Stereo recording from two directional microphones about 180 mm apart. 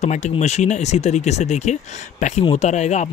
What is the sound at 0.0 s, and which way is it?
Speech, 40° left (ahead or behind).